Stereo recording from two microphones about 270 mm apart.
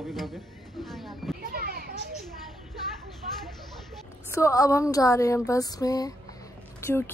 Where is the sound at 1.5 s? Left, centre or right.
Right.